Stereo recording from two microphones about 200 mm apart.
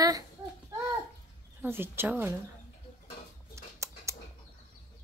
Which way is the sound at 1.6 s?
10° right (ahead or behind).